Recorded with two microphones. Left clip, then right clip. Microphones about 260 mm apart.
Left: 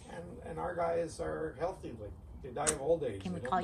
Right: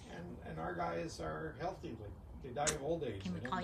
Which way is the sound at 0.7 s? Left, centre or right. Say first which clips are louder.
Left 8 dB; left.